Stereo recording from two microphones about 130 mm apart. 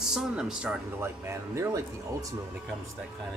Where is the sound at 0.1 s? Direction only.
5° right (ahead or behind).